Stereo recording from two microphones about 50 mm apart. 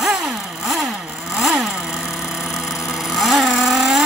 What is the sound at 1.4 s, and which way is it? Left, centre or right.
Motorcycle, centre.